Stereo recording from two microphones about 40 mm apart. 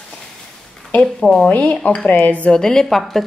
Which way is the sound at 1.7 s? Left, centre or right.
Left.